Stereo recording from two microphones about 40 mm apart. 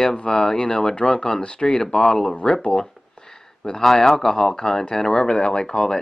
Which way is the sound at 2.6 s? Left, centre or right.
Centre.